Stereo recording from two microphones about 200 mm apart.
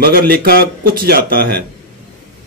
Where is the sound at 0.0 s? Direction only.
50° right (ahead or behind).